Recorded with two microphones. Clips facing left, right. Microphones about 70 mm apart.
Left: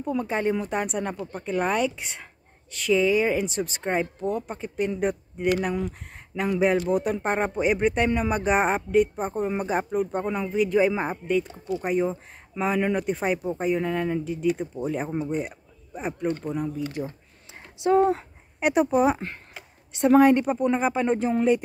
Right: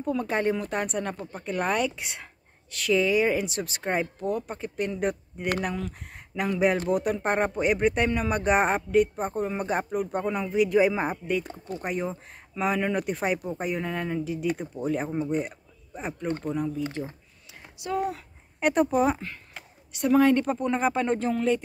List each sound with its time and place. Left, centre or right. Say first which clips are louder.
0.0 s speech: even; centre
16.8 s speech: left 1 dB; right
17.8 s a woman's voice: left 9 dB; left
18.6 s speech: left 2 dB; centre
19.9 s a woman's voice: left 4 dB; left
20.4 s speech: left 2 dB; centre
21.3 s a woman's voice: left 3 dB; centre